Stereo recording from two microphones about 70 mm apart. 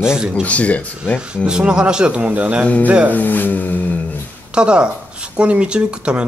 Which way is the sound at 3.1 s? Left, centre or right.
Left.